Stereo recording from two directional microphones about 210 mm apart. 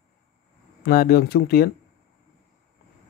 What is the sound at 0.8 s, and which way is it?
Speech, 45° left (ahead or behind).